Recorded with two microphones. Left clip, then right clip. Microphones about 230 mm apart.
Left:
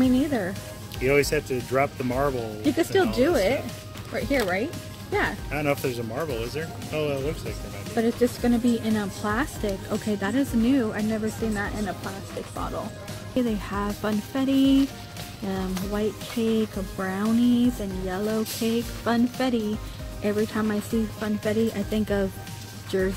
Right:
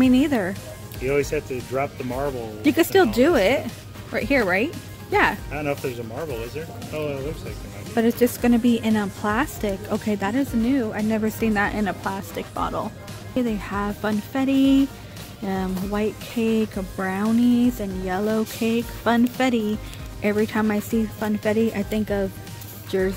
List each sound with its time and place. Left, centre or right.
0.0 s speech: centre
1.0 s speech: left
2.6 s a woman's voice: centre
5.5 s speech: left
7.9 s a woman's voice: centre
11.5 s a woman's voice: centre
13.3 s a woman's voice: centre